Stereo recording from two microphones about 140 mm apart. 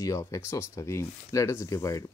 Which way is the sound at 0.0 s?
25° left (ahead or behind).